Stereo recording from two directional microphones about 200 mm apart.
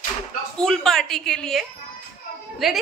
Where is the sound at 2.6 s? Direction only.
Centre (ahead or behind).